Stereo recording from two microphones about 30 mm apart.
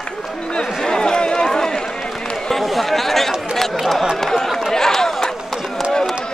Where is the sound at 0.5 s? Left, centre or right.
Left.